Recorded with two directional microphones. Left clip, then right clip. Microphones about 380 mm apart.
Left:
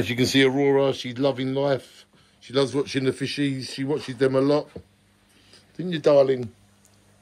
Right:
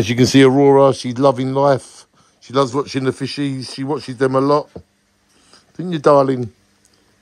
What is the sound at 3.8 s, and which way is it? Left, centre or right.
Speech, right.